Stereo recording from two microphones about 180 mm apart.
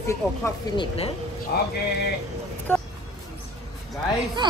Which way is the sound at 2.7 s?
10° left (ahead or behind).